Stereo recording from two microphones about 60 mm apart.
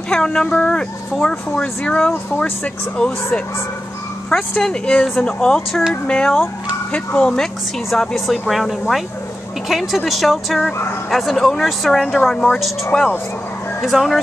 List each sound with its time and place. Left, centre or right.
0.1 s speech: centre
4.4 s speech: centre
5.7 s speech: centre
6.0 s speech: centre
7.9 s speech: centre
13.7 s speech: centre